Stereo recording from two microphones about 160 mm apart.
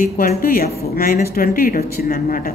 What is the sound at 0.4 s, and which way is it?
A woman's voice, 65° left (ahead or behind).